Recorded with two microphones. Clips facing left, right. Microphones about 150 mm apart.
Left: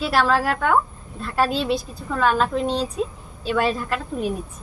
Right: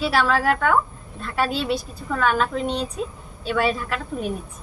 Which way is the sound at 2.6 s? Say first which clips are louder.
Left 2 dB; 35° left (ahead or behind).